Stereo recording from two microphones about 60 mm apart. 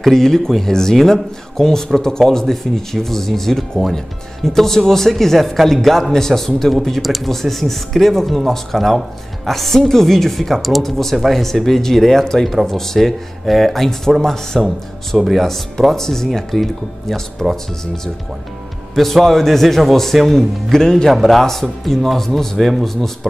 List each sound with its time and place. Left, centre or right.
0.0 s speech: centre
18.9 s speech: centre